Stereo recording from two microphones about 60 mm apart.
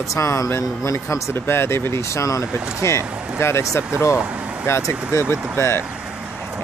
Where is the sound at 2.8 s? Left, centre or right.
Left.